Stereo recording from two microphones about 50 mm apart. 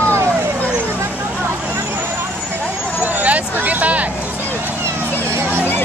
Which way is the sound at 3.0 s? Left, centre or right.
Right.